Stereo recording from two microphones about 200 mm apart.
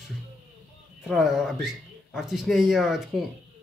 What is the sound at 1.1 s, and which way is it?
Speech, centre (ahead or behind).